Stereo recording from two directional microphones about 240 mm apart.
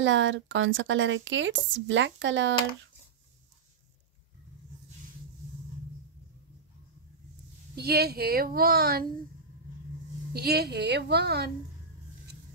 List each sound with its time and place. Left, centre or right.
0.0 s speech: right
7.7 s speech: right
10.3 s speech: right